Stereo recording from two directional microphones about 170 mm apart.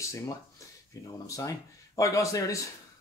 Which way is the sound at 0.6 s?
20° left (ahead or behind).